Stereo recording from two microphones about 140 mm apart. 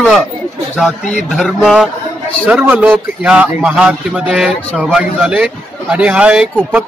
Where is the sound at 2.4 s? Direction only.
10° right (ahead or behind).